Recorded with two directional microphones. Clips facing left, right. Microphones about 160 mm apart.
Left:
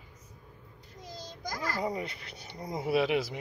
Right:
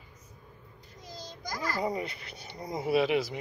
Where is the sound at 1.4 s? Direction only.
55° left (ahead or behind).